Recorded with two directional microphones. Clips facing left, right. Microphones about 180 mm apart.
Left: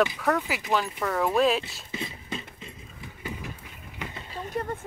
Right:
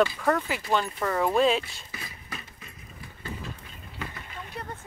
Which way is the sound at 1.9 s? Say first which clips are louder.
Left 7 dB; 25° left (ahead or behind).